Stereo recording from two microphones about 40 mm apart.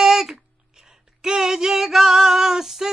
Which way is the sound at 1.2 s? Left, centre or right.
Centre.